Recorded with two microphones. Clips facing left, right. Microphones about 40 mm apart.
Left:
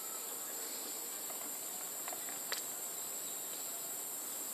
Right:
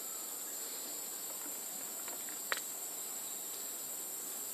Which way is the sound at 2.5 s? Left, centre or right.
Right.